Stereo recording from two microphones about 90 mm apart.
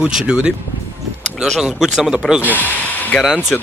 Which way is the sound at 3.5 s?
15° left (ahead or behind).